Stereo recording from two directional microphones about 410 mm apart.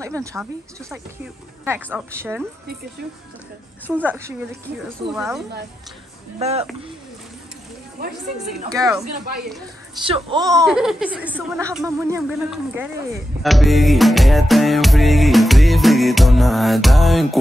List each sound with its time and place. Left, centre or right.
0.0 s speech: centre
3.8 s speech: centre
6.4 s speech: centre
8.0 s a woman's voice: right
8.4 s speech: centre
10.0 s speech: centre